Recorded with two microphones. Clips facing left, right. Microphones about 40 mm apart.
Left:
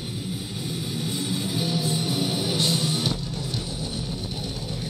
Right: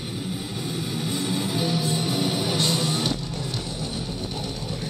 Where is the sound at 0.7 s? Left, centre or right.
Centre.